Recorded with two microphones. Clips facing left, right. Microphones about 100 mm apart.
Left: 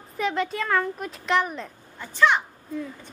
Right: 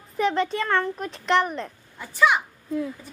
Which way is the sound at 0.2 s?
Centre (ahead or behind).